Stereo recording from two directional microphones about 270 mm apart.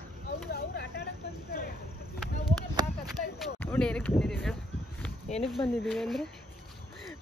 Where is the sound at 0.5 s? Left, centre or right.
Left.